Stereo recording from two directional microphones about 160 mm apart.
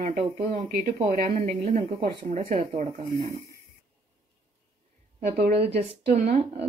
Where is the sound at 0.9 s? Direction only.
60° right (ahead or behind).